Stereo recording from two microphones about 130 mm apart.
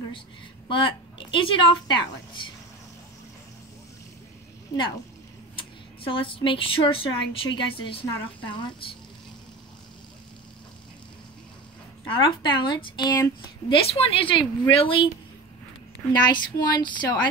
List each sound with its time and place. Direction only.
0.7 s speech: 40° left (ahead or behind)
5.6 s speech: 40° left (ahead or behind)
12.1 s speech: 40° left (ahead or behind)
16.1 s speech: 35° left (ahead or behind)